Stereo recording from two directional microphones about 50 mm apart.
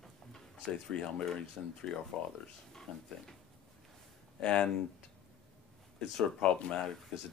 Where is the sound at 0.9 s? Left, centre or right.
Centre.